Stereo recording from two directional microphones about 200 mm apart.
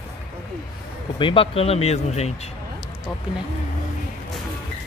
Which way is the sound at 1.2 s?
25° left (ahead or behind).